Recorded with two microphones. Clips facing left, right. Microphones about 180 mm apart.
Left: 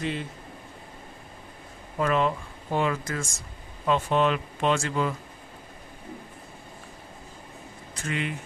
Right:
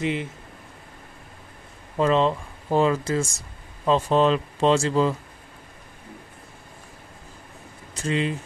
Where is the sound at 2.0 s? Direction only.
25° right (ahead or behind).